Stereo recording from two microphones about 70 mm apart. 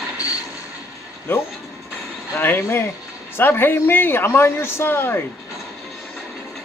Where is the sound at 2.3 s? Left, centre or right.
Left.